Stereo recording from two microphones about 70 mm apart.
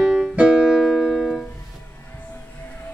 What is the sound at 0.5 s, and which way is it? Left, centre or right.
Music, centre.